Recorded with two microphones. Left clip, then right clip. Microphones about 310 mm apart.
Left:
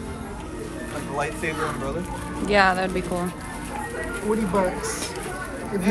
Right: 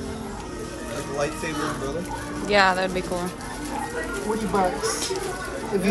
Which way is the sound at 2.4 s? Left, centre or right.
Centre.